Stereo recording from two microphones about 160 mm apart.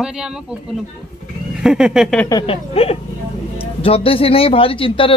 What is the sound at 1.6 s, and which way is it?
Speech, 5° right (ahead or behind).